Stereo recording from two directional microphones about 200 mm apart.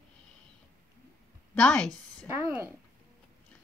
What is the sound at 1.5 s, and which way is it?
Speech, 5° left (ahead or behind).